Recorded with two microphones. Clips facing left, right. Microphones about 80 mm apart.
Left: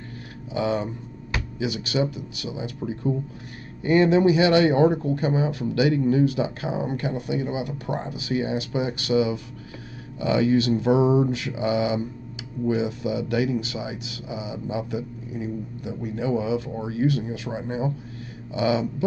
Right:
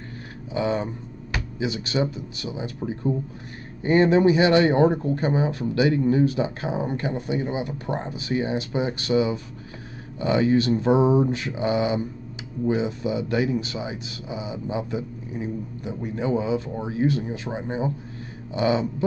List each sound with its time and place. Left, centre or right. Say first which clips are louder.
0.5 s speech: even; right
3.8 s speech: even; right